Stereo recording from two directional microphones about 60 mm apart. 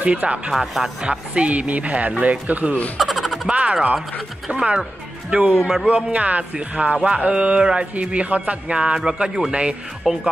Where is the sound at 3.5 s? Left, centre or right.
Centre.